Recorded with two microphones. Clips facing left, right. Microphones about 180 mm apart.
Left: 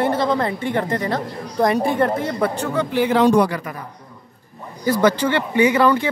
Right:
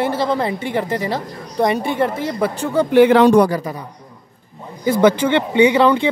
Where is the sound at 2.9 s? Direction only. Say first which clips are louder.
Right 6 dB; 70° right (ahead or behind).